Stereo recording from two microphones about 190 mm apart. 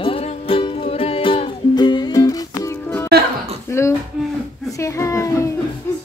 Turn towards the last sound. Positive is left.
turn(degrees=15)  # may be behind; listen again after turning